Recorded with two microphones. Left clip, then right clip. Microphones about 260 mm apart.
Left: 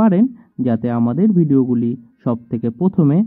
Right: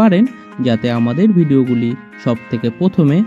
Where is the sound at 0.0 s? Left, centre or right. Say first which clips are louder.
Right 3 dB; right.